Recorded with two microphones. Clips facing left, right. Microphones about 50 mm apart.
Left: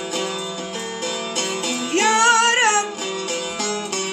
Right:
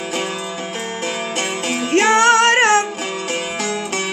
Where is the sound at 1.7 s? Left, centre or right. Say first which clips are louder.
Right 4 dB; right.